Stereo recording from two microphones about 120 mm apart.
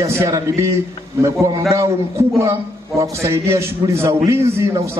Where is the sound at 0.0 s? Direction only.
25° right (ahead or behind).